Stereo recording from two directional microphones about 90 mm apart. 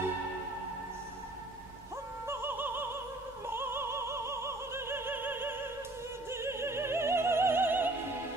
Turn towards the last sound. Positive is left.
turn(degrees=-25)  # may be behind; listen again after turning